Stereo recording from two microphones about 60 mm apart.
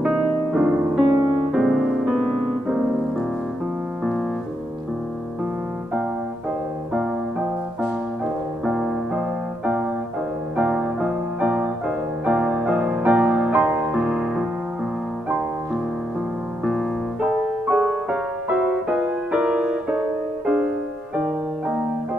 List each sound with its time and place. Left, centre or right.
0.0 s music: centre
1.5 s piano: centre
8.6 s music: centre
10.5 s music: centre; by 13.8 s right
13.9 s piano: centre
17.2 s music: centre
18.6 s music: right
18.9 s music: centre